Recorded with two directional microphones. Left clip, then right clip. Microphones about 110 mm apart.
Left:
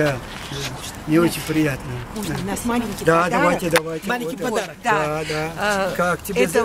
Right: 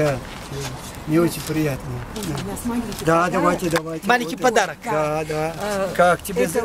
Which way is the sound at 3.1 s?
Centre (ahead or behind).